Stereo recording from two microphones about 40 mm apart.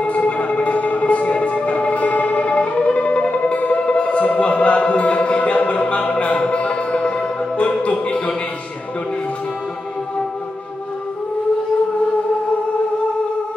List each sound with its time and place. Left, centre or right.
0.0 s music: left